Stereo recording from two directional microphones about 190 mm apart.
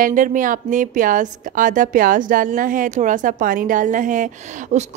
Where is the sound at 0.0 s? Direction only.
45° right (ahead or behind).